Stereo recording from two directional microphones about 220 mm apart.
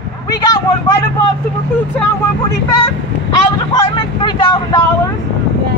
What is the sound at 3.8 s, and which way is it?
Speech, 20° left (ahead or behind).